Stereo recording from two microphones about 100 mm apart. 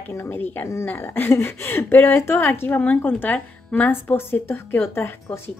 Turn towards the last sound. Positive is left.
turn(degrees=25)  # may be behind; listen again after turning